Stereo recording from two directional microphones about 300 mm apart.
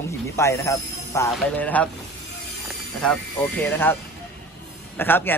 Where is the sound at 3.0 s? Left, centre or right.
Centre.